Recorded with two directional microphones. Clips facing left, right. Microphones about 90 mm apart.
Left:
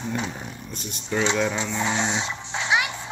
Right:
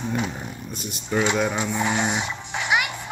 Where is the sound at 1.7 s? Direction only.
25° left (ahead or behind).